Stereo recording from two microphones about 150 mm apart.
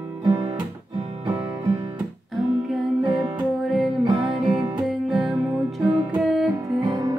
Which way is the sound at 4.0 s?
35° right (ahead or behind).